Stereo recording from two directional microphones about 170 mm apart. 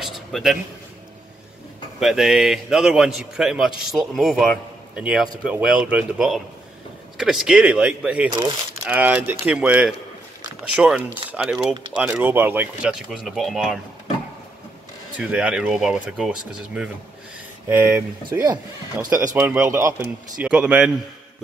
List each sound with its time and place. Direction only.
0.0 s a sound: centre (ahead or behind)
2.0 s a man's voice: 5° right (ahead or behind)
8.3 s speech: 25° right (ahead or behind)
8.8 s a man's voice: 10° right (ahead or behind)
15.1 s a man's voice: 5° right (ahead or behind)